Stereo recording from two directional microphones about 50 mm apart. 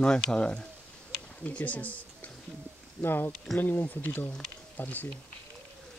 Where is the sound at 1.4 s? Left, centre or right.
Left.